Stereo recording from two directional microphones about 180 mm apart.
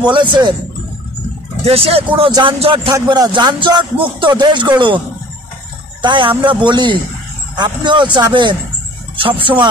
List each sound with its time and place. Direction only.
0.0 s speech: 25° right (ahead or behind)
1.6 s speech: 35° right (ahead or behind)
6.0 s speech: 25° right (ahead or behind)